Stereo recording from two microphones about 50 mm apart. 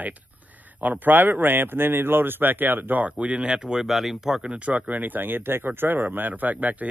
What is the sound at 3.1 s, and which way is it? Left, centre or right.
Speech, right.